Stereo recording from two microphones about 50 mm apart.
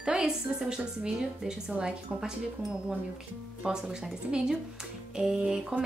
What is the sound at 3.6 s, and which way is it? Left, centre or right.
Speech, centre.